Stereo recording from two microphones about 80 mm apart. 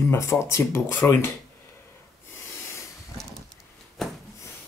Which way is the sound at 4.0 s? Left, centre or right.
Centre.